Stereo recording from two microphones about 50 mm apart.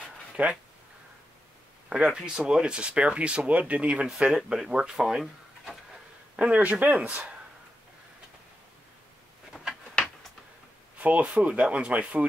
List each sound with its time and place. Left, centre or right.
0.4 s speech: right
1.9 s speech: centre
6.3 s speech: right
11.0 s speech: right